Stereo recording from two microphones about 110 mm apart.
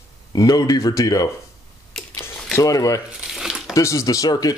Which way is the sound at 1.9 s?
5° left (ahead or behind).